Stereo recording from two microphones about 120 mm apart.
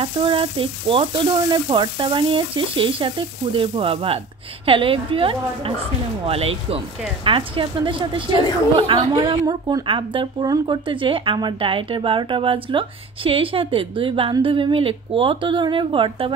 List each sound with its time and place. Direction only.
0.0 s a woman's voice: 45° right (ahead or behind)
10.4 s a woman's voice: 30° right (ahead or behind)
10.9 s speech: 45° right (ahead or behind)